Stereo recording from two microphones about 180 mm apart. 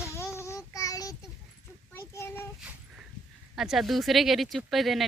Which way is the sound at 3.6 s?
Centre (ahead or behind).